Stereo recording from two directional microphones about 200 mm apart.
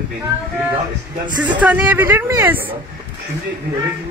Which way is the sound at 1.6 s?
10° right (ahead or behind).